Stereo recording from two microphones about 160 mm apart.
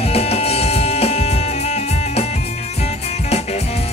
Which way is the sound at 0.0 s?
40° left (ahead or behind).